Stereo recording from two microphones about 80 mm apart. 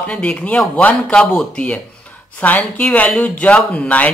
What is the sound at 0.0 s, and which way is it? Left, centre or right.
Speech, centre.